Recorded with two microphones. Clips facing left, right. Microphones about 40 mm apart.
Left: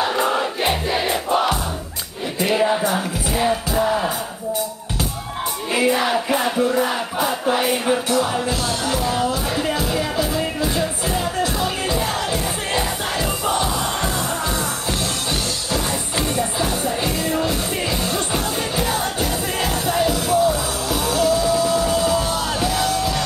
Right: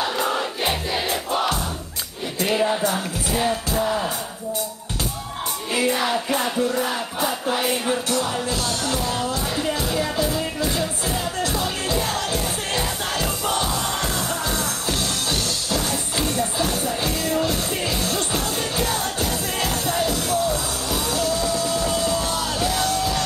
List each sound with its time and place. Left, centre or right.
0.0 s music: centre
5.7 s music: centre
15.7 s music: centre